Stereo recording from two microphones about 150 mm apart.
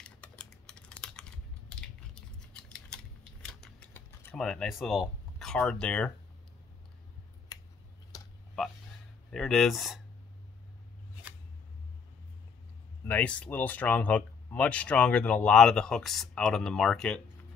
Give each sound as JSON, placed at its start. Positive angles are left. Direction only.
{"t": 0.0, "sound": "typing", "side_deg": 5}
{"t": 5.7, "sound": "speech", "side_deg": 5}
{"t": 7.5, "sound": "a sound", "side_deg": 25}
{"t": 9.3, "sound": "speech", "side_deg": 0}
{"t": 13.0, "sound": "speech", "side_deg": 10}